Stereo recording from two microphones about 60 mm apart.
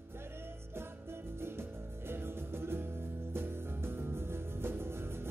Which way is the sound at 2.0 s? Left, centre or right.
Right.